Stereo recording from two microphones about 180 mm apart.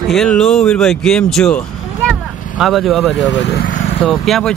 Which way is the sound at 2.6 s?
Centre (ahead or behind).